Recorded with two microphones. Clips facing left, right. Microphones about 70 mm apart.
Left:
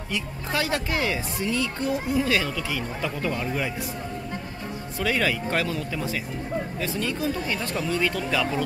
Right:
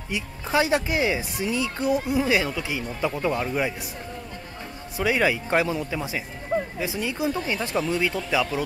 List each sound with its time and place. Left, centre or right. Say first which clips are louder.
0.1 s speech: right 4 dB; centre
4.9 s speech: right 3 dB; centre